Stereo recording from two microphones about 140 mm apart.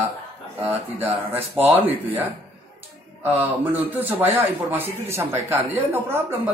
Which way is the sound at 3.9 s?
15° right (ahead or behind).